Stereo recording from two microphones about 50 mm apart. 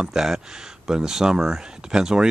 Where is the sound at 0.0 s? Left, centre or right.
Centre.